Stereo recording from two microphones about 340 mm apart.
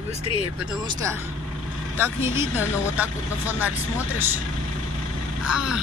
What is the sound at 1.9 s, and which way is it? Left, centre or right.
Speech, centre.